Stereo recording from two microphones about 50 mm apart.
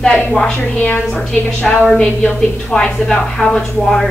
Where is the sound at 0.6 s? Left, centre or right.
Left.